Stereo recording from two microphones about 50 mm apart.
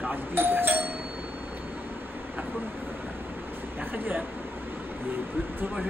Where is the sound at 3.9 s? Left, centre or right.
Right.